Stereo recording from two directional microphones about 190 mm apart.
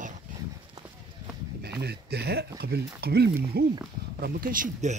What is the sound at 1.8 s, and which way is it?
Speech, 60° right (ahead or behind).